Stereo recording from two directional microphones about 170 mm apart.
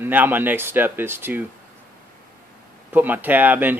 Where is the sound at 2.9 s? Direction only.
10° right (ahead or behind).